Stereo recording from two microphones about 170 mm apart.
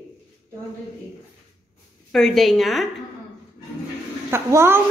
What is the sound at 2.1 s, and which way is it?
Speech, centre (ahead or behind).